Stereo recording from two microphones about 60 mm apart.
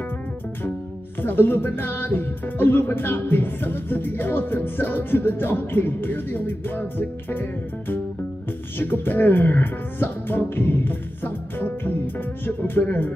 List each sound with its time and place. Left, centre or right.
1.2 s speech: left
8.7 s speech: left